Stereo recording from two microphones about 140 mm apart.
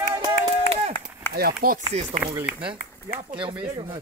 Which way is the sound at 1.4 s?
90° right.